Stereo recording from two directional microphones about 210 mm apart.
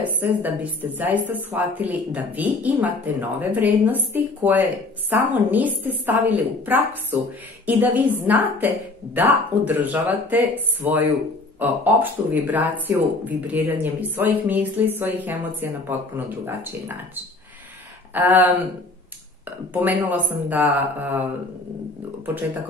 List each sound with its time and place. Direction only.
0.0 s a sound: 10° right (ahead or behind)
0.9 s speech: 10° right (ahead or behind)
19.7 s speech: 10° right (ahead or behind)